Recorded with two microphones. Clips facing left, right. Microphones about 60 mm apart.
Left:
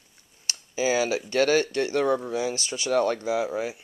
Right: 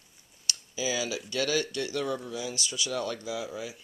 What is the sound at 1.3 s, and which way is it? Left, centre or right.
A man's voice, left.